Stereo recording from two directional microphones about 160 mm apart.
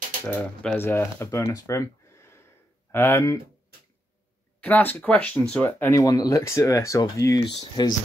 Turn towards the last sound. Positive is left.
turn(degrees=25)  # may be behind; listen again after turning